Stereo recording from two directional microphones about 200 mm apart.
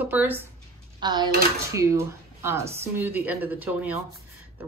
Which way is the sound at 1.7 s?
15° right (ahead or behind).